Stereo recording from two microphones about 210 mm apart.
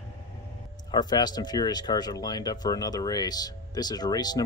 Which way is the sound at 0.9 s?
20° left (ahead or behind).